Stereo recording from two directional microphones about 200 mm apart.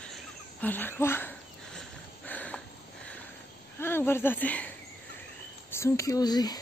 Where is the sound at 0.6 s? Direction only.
10° left (ahead or behind).